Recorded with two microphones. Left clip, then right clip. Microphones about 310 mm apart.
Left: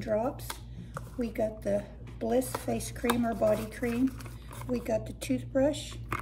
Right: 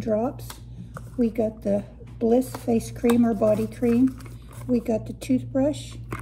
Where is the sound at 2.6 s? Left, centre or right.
Right.